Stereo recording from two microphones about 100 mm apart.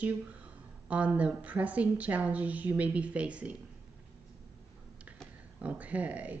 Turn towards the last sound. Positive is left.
turn(degrees=-15)  # may be behind; listen again after turning